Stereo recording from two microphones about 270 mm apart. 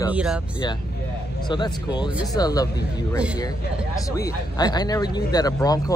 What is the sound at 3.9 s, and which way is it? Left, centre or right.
Speech, centre.